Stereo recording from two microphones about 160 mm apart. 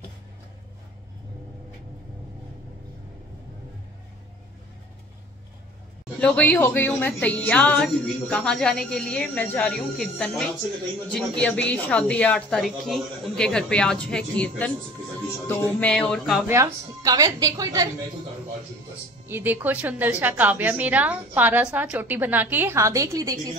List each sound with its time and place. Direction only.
6.1 s speech: 5° left (ahead or behind)
15.4 s music: 10° left (ahead or behind)
16.4 s a woman's voice: 20° right (ahead or behind)
19.2 s a woman's voice: 15° right (ahead or behind)